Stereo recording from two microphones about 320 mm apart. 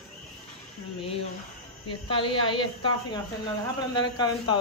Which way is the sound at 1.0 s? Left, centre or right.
Centre.